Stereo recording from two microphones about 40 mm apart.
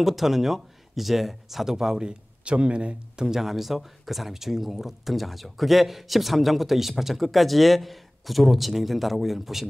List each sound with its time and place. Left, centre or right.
0.0 s speech: centre
2.4 s speech: right
3.3 s speech: centre